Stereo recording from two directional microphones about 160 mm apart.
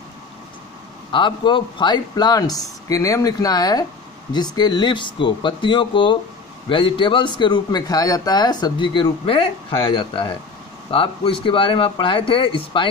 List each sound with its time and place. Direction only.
1.1 s speech: 30° left (ahead or behind)